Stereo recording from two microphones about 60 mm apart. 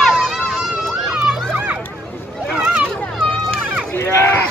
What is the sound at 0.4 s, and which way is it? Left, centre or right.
Run, centre.